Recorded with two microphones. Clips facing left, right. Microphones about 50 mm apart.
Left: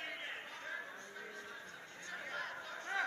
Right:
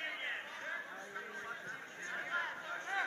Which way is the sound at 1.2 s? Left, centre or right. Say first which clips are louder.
Right 6 dB; right.